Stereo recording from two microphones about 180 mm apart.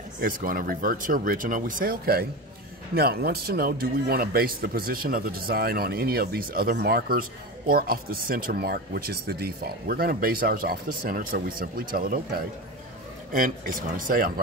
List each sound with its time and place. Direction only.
0.2 s a man's voice: 55° right (ahead or behind)